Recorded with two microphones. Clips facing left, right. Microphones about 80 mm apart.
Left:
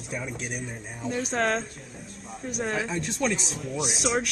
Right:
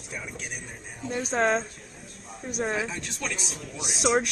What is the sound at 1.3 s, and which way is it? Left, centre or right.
A man's voice, centre.